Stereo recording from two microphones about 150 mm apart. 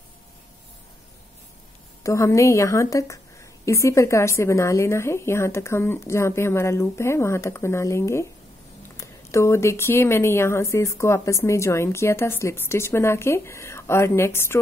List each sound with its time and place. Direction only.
2.0 s a woman's voice: 20° left (ahead or behind)